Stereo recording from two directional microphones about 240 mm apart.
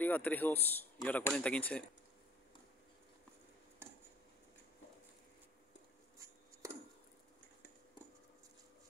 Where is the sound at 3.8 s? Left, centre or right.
Centre.